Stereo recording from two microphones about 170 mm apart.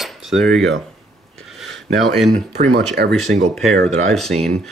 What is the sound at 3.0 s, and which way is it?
Speech, 70° right (ahead or behind).